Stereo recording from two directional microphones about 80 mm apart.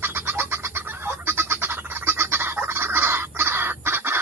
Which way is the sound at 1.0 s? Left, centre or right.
Right.